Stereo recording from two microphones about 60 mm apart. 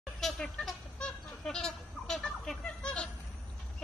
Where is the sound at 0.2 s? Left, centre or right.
Centre.